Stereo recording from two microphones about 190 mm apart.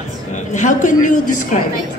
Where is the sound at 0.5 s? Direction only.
40° left (ahead or behind).